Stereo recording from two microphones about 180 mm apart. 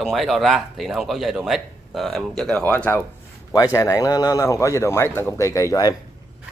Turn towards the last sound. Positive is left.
turn(degrees=20)  # may be behind; listen again after turning